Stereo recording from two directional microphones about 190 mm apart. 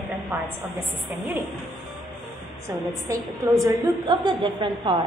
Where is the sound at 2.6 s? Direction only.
15° right (ahead or behind).